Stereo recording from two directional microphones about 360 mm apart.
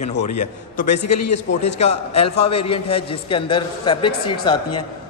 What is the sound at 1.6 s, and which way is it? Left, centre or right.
A man's voice, centre.